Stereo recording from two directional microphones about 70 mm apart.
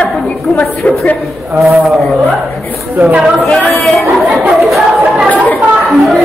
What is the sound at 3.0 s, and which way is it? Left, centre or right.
Speech, right.